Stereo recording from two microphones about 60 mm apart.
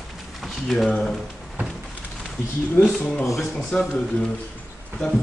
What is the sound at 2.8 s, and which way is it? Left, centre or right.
Speech, centre.